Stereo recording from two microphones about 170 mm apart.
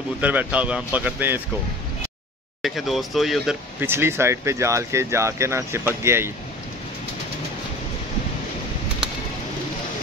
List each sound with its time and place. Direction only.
0.2 s speech: 10° right (ahead or behind)
2.6 s speech: centre (ahead or behind)
3.8 s speech: 15° right (ahead or behind)